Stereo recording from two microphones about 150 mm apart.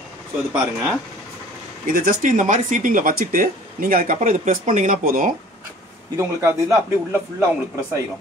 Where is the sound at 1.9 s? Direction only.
70° right (ahead or behind).